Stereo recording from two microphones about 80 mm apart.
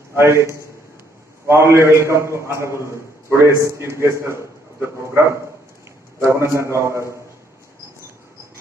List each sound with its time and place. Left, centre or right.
0.1 s a man's voice: right